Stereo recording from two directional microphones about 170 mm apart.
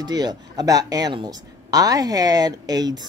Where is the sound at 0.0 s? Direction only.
25° right (ahead or behind).